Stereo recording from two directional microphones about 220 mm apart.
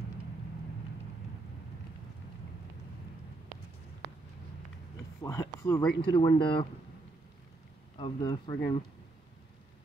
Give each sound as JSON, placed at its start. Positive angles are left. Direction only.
{"t": 5.2, "sound": "speech", "side_deg": 15}
{"t": 8.0, "sound": "speech", "side_deg": 20}